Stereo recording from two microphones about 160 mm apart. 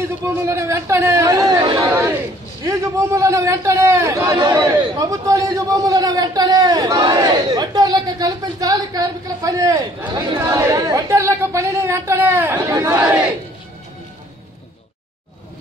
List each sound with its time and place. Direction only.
0.2 s a man's voice: 20° right (ahead or behind)